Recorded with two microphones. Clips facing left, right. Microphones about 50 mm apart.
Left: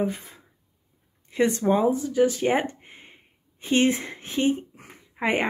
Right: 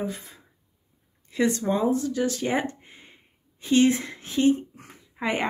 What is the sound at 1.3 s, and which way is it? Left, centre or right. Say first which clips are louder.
A woman's voice: left 2 dB; left.